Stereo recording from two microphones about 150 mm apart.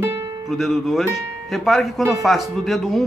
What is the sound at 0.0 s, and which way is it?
Music, 20° right (ahead or behind).